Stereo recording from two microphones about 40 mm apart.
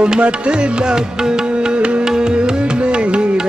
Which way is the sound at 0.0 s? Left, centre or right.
Right.